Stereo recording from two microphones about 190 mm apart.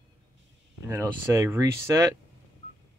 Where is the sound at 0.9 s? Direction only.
15° right (ahead or behind).